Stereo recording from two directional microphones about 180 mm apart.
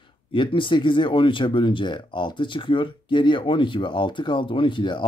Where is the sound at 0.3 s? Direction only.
25° left (ahead or behind).